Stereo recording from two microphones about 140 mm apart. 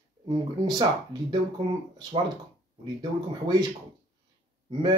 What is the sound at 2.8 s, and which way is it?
Speech, 30° right (ahead or behind).